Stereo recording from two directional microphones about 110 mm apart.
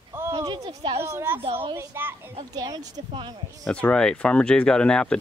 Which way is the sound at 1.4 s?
60° right (ahead or behind).